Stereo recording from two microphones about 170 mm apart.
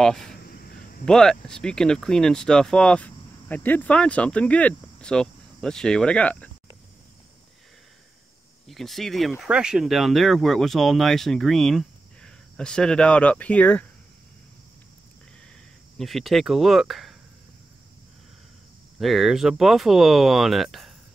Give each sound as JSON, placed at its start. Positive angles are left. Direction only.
{"t": 0.0, "sound": "speech", "side_deg": 0}
{"t": 0.4, "sound": "a sound", "side_deg": 60}
{"t": 1.0, "sound": "speech", "side_deg": 5}
{"t": 8.6, "sound": "speech", "side_deg": 0}
{"t": 16.0, "sound": "speech", "side_deg": 0}
{"t": 18.9, "sound": "speech", "side_deg": 0}